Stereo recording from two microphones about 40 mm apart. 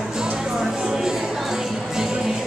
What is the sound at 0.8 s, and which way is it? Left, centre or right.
Music, centre.